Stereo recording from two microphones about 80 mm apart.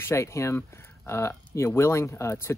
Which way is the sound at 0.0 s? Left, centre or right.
Left.